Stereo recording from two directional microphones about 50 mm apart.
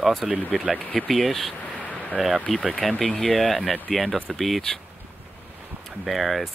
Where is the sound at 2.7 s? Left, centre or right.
Centre.